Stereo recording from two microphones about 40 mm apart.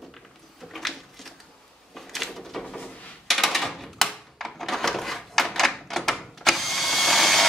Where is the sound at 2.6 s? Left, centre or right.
Left.